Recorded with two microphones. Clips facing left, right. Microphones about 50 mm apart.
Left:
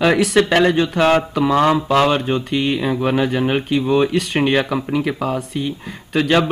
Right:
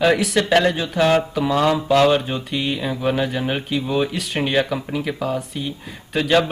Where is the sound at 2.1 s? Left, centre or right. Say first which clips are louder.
Left 1 dB; centre.